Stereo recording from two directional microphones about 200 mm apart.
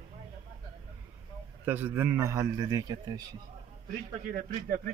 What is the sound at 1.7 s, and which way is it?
A man's voice, 10° right (ahead or behind).